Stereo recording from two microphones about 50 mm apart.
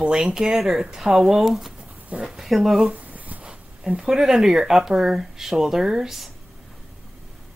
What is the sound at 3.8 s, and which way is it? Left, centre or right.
Speech, centre.